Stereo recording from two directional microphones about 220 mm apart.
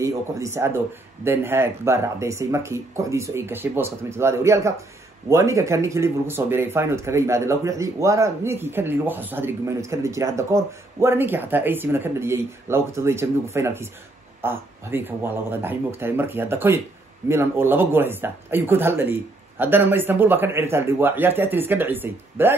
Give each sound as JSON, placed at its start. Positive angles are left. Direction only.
{"t": 0.0, "sound": "speech", "side_deg": -15}